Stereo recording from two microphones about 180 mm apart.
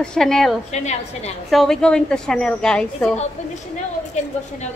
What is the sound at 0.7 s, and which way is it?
Speech, 40° left (ahead or behind).